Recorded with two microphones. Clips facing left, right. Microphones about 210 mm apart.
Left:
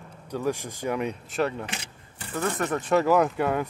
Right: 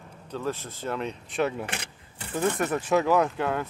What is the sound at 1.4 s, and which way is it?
Speech, centre (ahead or behind).